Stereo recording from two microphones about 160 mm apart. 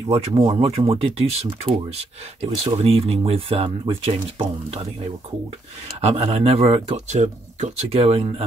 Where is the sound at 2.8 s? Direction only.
35° right (ahead or behind).